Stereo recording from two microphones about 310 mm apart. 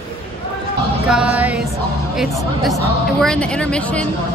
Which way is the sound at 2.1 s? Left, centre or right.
Centre.